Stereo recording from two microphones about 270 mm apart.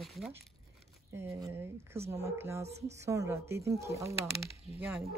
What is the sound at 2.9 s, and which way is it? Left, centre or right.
Speech, centre.